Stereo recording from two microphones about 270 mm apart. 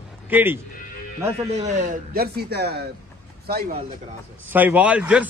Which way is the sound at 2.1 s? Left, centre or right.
Right.